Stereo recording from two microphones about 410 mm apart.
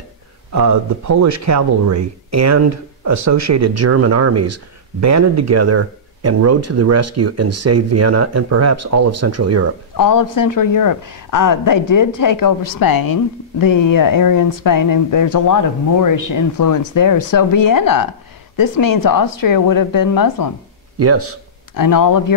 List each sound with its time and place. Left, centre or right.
0.5 s speech: right
9.9 s speech: left
21.0 s speech: right
21.7 s speech: left